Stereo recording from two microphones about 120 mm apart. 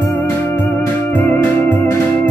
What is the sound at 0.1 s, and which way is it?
Music, 20° left (ahead or behind).